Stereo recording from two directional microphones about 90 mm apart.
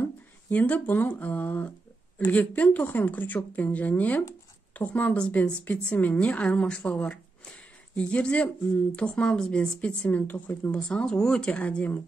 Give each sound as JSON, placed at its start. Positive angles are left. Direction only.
{"t": 0.0, "sound": "speech", "side_deg": 20}
{"t": 10.8, "sound": "speech", "side_deg": 10}